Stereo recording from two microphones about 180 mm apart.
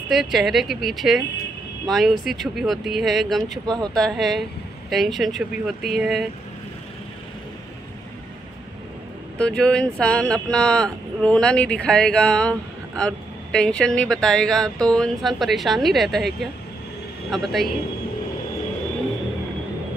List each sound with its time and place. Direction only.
0.1 s speech: centre (ahead or behind)
3.6 s speech: 20° right (ahead or behind)
3.9 s speech: centre (ahead or behind)
9.4 s speech: 5° left (ahead or behind)
17.3 s speech: centre (ahead or behind)